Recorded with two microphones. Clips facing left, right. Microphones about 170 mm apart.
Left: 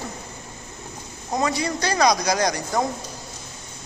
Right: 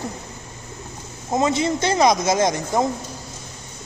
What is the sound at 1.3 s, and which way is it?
A woman's voice, 25° right (ahead or behind).